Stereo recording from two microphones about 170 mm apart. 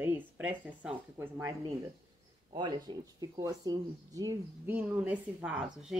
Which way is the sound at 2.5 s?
25° right (ahead or behind).